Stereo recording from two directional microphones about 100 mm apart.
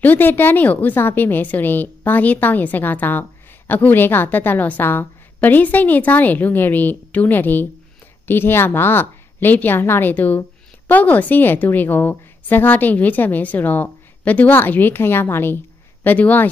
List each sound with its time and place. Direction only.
0.0 s a woman's voice: 20° left (ahead or behind)